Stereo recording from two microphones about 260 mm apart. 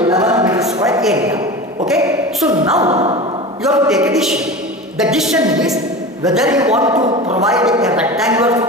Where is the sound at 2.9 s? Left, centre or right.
Right.